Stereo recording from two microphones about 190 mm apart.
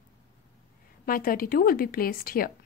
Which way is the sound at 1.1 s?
50° left (ahead or behind).